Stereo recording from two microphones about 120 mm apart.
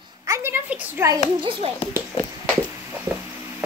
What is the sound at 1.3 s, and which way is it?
Speech, 45° right (ahead or behind).